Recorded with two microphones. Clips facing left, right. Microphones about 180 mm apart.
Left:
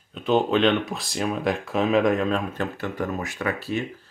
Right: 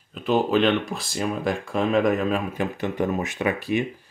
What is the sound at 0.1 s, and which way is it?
Speech, centre (ahead or behind).